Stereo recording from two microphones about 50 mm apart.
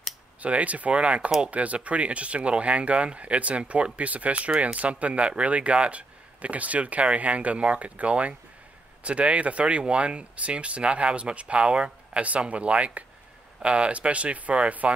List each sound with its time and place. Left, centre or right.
0.4 s speech: right